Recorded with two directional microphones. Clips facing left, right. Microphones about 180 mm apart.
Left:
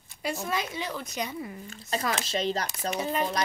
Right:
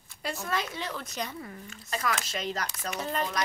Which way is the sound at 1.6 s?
30° left (ahead or behind).